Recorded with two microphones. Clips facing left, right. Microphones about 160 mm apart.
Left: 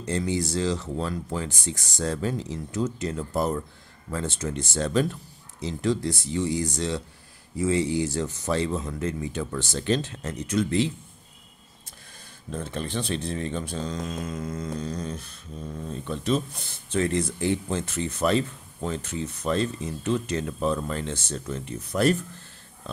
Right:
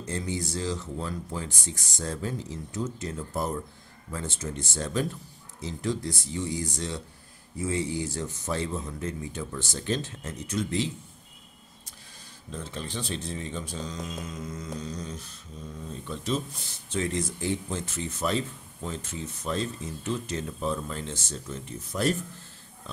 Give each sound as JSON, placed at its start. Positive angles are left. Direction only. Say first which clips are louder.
{"t": 0.0, "sound": "speech", "louder": "left 5 dB", "side_deg": 75}
{"t": 12.4, "sound": "speech", "louder": "left 5 dB", "side_deg": 55}